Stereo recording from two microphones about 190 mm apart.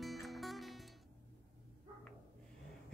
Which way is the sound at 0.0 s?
Centre (ahead or behind).